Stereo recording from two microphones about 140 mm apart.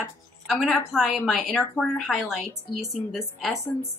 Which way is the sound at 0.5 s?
Centre (ahead or behind).